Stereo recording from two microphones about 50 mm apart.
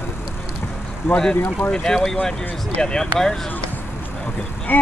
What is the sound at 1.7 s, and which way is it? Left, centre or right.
Speech, centre.